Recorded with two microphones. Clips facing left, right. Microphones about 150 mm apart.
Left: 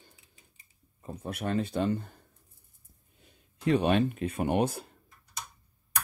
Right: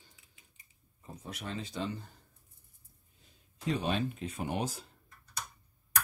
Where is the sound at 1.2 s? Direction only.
55° left (ahead or behind).